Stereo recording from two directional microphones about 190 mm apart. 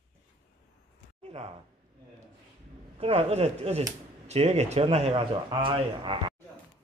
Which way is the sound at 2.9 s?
30° right (ahead or behind).